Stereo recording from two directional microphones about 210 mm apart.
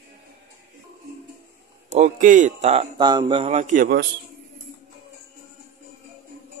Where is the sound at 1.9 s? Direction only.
35° right (ahead or behind).